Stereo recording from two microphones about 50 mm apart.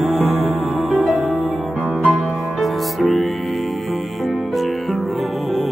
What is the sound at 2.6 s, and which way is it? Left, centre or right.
Music, centre.